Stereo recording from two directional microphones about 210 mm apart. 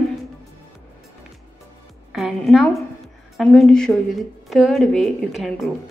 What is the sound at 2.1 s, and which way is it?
A woman's voice, centre (ahead or behind).